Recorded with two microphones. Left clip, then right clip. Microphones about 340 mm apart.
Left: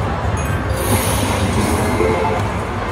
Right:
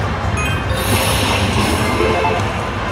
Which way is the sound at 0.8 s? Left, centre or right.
Centre.